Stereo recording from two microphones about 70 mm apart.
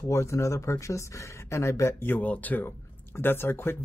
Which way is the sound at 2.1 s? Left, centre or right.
Left.